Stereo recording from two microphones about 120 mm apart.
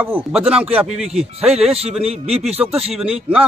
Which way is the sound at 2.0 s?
60° right (ahead or behind).